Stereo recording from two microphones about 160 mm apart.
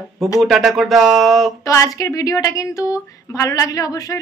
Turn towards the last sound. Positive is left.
turn(degrees=20)  # may be behind; listen again after turning